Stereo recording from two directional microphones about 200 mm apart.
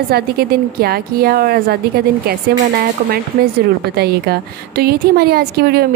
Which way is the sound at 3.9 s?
50° right (ahead or behind).